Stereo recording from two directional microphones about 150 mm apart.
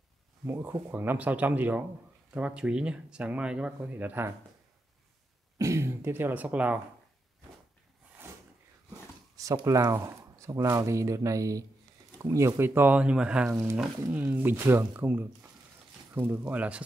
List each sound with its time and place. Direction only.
0.5 s speech: 15° right (ahead or behind)
5.6 s speech: 20° right (ahead or behind)
9.4 s speech: 20° right (ahead or behind)